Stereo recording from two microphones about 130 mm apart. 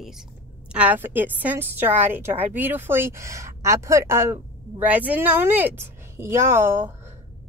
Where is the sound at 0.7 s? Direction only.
15° right (ahead or behind).